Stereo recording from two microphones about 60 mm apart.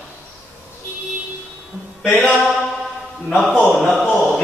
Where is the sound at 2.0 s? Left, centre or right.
Centre.